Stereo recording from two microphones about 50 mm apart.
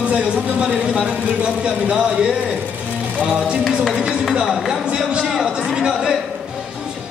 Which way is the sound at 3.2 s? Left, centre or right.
Right.